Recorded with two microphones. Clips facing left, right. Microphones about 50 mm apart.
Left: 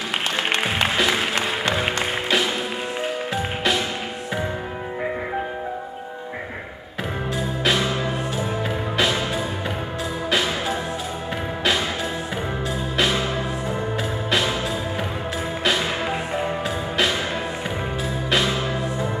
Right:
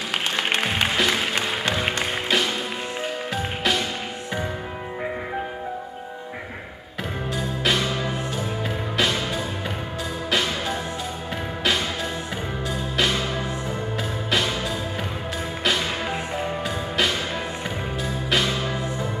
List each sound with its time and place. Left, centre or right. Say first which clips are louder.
0.7 s music: left 2 dB; centre
7.3 s music: left 1 dB; centre
12.9 s music: left 2 dB; centre
15.6 s music: left 1 dB; centre
18.3 s music: left 2 dB; centre